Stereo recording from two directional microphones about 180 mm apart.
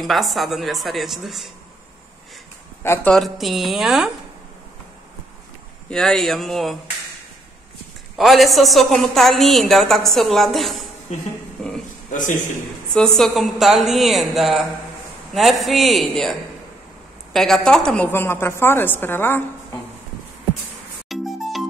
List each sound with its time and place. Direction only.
0.0 s a woman's voice: centre (ahead or behind)
2.8 s a woman's voice: 10° left (ahead or behind)
5.9 s a woman's voice: centre (ahead or behind)
8.2 s a woman's voice: centre (ahead or behind)
12.1 s a man's voice: 45° left (ahead or behind)
12.9 s a woman's voice: 5° left (ahead or behind)
21.1 s music: centre (ahead or behind)